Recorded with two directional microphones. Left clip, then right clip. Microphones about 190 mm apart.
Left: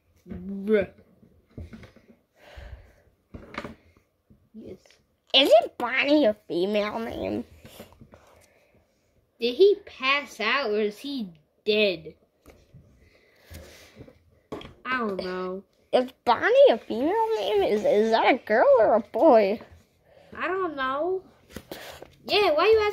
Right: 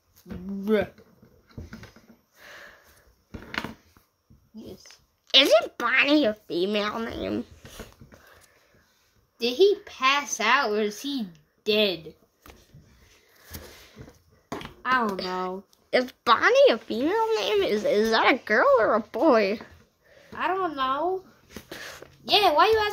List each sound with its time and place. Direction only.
0.7 s speech: 20° right (ahead or behind)
2.4 s a sound: 5° right (ahead or behind)
5.3 s a woman's voice: centre (ahead or behind)
9.4 s speech: 15° right (ahead or behind)
15.1 s speech: 5° right (ahead or behind)
21.8 s a sound: centre (ahead or behind)
22.4 s speech: 15° right (ahead or behind)